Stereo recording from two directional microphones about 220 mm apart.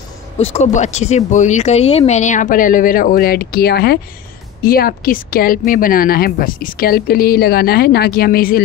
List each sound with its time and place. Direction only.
0.4 s speech: 30° left (ahead or behind)